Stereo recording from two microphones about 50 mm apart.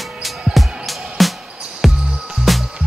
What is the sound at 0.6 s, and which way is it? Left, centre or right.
Music, centre.